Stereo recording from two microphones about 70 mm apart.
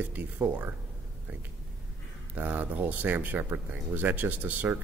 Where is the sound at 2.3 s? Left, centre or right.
Right.